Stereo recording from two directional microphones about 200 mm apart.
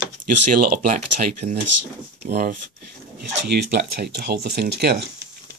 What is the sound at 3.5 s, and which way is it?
Speech, 55° right (ahead or behind).